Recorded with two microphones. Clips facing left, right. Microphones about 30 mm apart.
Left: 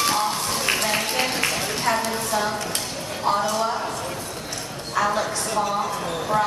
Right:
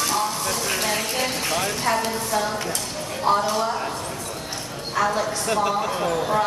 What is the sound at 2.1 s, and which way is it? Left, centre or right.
A woman's voice, centre.